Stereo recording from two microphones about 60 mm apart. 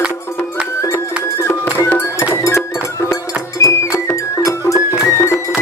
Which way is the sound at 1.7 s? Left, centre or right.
Left.